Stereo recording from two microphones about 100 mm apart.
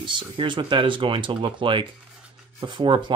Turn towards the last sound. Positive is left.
turn(degrees=-55)  # may be behind; listen again after turning